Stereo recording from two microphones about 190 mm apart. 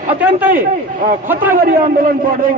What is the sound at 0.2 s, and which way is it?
Speech, 10° right (ahead or behind).